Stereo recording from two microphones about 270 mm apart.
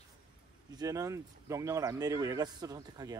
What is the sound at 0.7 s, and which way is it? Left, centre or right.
A man's voice, centre.